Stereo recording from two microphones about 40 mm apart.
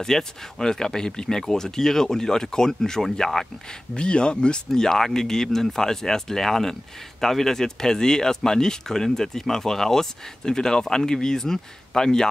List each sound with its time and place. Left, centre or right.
0.0 s speech: centre
3.9 s speech: left
4.6 s speech: centre